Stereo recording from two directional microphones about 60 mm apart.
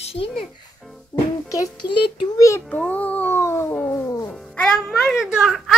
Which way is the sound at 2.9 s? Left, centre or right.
Left.